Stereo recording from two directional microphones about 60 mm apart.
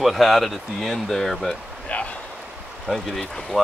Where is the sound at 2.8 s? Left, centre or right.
Centre.